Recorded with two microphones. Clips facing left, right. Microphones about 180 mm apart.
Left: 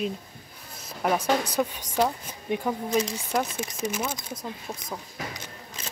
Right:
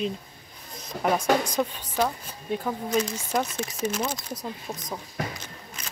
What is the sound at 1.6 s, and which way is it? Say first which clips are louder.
Speech: left 1 dB; 10° left (ahead or behind).